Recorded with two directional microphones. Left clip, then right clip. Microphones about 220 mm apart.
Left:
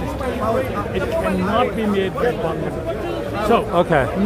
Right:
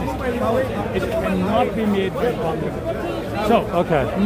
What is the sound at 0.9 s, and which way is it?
A man's voice, centre (ahead or behind).